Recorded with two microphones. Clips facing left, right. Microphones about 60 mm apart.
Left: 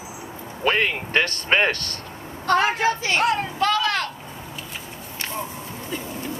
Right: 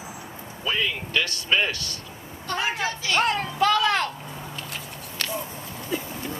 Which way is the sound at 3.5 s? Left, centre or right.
Centre.